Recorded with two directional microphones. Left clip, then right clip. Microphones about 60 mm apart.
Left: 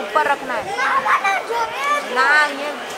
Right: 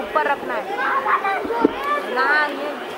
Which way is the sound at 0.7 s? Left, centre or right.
Left.